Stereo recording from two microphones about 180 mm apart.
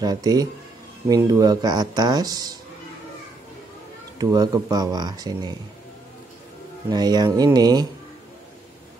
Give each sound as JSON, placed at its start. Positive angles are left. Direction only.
{"t": 0.0, "sound": "speech", "side_deg": -20}
{"t": 4.2, "sound": "speech", "side_deg": -20}
{"t": 6.9, "sound": "speech", "side_deg": -20}